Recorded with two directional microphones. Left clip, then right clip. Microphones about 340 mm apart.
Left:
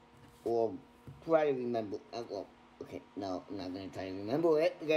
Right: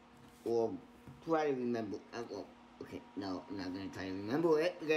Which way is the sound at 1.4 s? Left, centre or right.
Centre.